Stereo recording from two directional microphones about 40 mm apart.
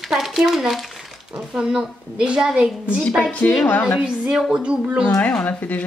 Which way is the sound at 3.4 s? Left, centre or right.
Left.